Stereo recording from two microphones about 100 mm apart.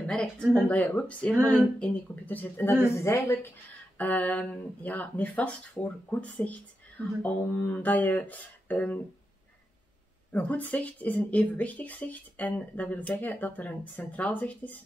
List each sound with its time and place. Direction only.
0.0 s a woman's voice: 10° left (ahead or behind)
10.3 s speech: 15° left (ahead or behind)